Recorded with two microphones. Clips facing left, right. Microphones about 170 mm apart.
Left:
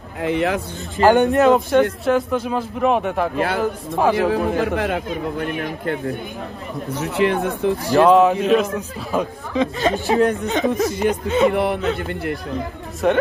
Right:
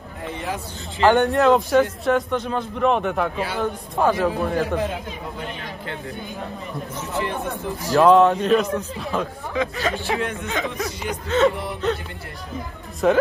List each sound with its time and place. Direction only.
0.2 s a man's voice: 80° left
1.0 s speech: 45° left (ahead or behind)
1.3 s speech: 5° left (ahead or behind)
3.3 s a man's voice: 55° left (ahead or behind)
3.6 s speech: centre (ahead or behind)
4.7 s a man's voice: 70° left (ahead or behind)
7.0 s speech: 75° left (ahead or behind)
7.9 s speech: 5° left (ahead or behind)
9.6 s speech: 25° left (ahead or behind)
9.9 s speech: 40° left (ahead or behind)
11.2 s speech: 15° left (ahead or behind)
11.5 s a man's voice: 65° left (ahead or behind)
13.0 s speech: centre (ahead or behind)